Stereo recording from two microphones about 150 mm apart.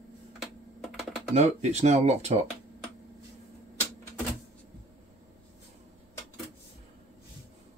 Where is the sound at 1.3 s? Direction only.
45° right (ahead or behind).